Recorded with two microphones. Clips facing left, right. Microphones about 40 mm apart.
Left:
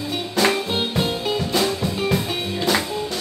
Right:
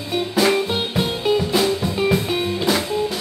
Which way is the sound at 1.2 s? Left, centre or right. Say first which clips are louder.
Right 7 dB; centre.